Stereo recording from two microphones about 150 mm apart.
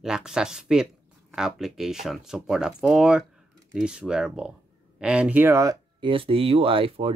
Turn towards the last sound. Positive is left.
turn(degrees=-40)  # may be behind; listen again after turning